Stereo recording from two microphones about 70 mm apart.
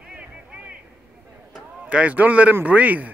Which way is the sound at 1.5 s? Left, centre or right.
Centre.